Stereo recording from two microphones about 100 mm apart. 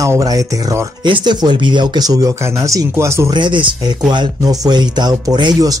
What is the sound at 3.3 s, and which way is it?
Speech, 55° right (ahead or behind).